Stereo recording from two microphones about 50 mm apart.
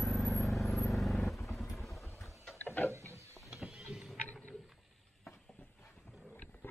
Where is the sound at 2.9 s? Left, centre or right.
Right.